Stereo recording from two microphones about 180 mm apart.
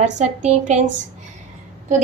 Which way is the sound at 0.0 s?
40° right (ahead or behind).